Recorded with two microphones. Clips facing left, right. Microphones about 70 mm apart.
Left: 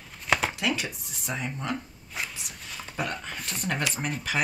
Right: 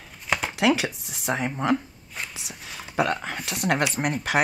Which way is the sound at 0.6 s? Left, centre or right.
Right.